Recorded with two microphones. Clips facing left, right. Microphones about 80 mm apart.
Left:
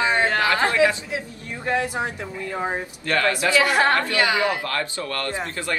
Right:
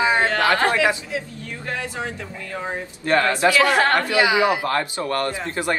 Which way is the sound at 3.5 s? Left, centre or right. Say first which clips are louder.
Left 1 dB; centre.